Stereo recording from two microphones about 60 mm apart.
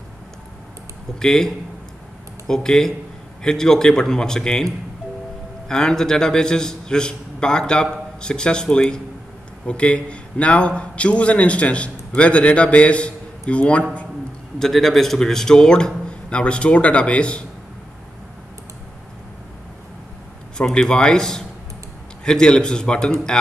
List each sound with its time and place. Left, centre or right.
1.2 s a man's voice: centre
5.7 s a man's voice: centre
14.6 s a man's voice: centre
20.5 s a man's voice: centre